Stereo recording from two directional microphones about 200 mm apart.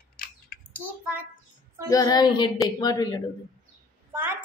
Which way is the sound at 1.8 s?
20° left (ahead or behind).